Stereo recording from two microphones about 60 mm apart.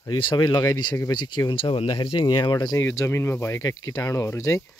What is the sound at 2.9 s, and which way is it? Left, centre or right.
Rub, left.